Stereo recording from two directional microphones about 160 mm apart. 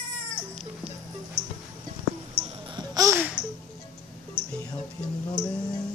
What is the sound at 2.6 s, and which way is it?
Babbling, 25° right (ahead or behind).